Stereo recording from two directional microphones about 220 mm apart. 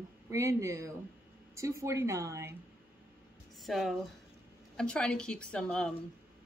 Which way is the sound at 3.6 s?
Centre (ahead or behind).